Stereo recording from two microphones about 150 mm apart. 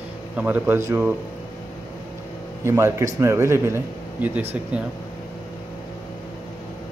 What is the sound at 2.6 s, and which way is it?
Speech, 15° right (ahead or behind).